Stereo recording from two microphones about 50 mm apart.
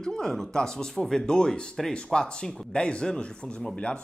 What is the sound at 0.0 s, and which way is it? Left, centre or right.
Speech, centre.